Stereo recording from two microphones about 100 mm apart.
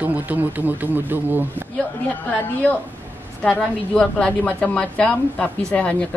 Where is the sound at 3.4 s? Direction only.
5° left (ahead or behind).